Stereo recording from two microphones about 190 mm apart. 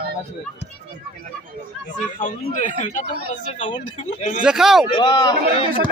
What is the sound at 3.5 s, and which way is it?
Speech, 25° left (ahead or behind).